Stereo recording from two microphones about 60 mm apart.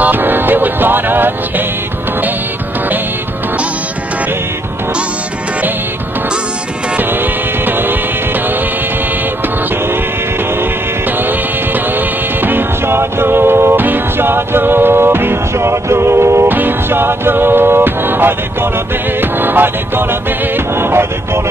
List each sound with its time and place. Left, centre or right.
0.0 s music: right
7.6 s music: right
12.4 s music: right
16.4 s music: right